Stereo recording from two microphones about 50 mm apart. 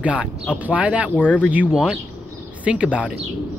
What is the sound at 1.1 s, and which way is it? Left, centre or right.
Speech, left.